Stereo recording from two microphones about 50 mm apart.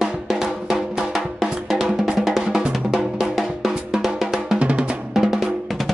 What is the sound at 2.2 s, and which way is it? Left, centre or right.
Drum, centre.